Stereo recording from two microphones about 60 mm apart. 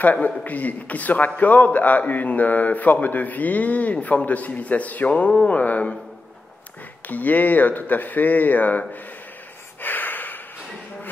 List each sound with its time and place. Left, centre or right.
0.0 s a man's voice: left
7.1 s a man's voice: left
9.8 s snort: left